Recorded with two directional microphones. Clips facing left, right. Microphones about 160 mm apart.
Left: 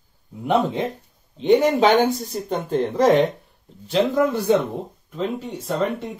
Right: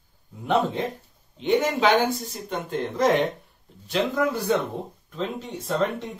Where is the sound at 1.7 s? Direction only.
40° left (ahead or behind).